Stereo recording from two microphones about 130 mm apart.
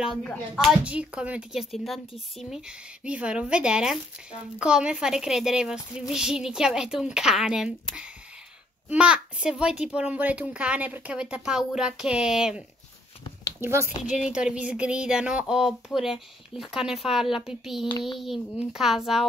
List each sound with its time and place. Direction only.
0.0 s speech: centre (ahead or behind)
0.8 s speech: 10° right (ahead or behind)
13.6 s speech: 20° right (ahead or behind)
14.0 s speech: 5° right (ahead or behind)